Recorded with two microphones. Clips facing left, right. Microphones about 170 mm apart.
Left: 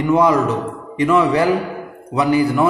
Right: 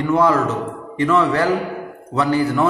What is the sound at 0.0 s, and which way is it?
A man's voice, 15° left (ahead or behind).